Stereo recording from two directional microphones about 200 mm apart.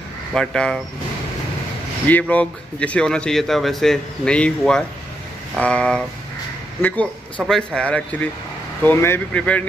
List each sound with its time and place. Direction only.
0.3 s speech: 5° left (ahead or behind)
2.0 s speech: 10° left (ahead or behind)